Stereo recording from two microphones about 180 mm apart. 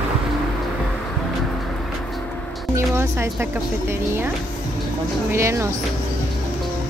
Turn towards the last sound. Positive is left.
turn(degrees=-15)  # may be behind; listen again after turning